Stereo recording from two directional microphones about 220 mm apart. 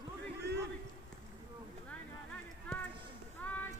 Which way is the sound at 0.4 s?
50° right (ahead or behind).